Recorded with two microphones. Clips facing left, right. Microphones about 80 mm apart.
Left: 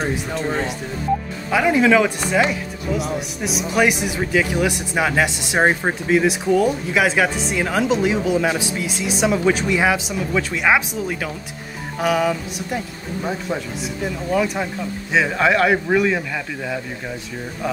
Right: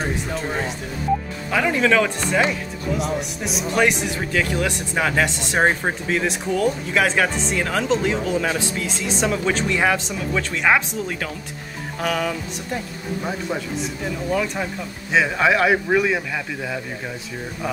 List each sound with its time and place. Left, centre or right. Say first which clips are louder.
0.0 s a man's voice: left 2 dB; centre